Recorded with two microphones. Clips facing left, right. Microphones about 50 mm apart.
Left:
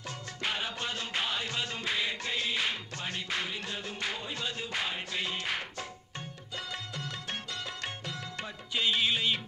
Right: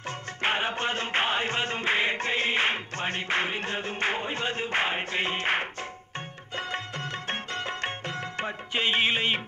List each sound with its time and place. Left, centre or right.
0.4 s music: right